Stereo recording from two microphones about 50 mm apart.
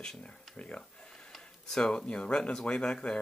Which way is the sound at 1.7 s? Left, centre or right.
Centre.